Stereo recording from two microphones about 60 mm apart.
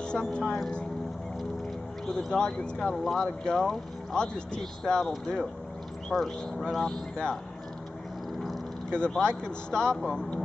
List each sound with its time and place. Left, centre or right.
0.1 s speech: centre
2.3 s speech: centre
8.9 s speech: centre